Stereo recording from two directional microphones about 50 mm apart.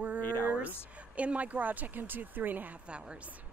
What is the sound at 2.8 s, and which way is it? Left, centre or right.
Speech, right.